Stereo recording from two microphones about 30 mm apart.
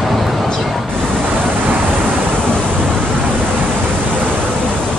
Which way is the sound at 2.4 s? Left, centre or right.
Left.